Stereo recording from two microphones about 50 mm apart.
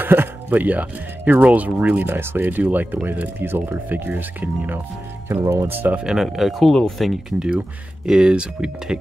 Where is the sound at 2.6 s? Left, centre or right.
Right.